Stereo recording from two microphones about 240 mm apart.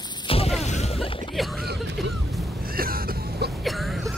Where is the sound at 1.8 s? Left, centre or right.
Right.